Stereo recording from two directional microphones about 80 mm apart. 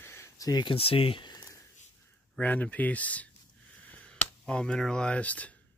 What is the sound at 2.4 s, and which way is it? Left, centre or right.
Speech, centre.